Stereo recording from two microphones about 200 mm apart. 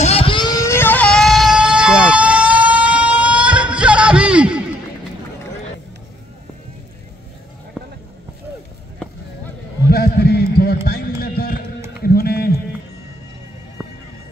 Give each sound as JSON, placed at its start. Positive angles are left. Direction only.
{"t": 0.0, "sound": "vehicle", "side_deg": 30}
{"t": 9.8, "sound": "music", "side_deg": 50}
{"t": 12.0, "sound": "a sound", "side_deg": 50}